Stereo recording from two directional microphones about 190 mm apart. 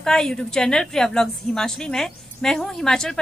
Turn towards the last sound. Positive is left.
turn(degrees=5)  # may be behind; listen again after turning